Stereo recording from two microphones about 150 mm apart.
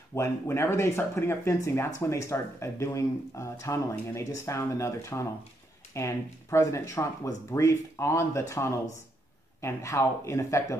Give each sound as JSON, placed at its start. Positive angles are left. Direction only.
{"t": 0.1, "sound": "speech", "side_deg": 15}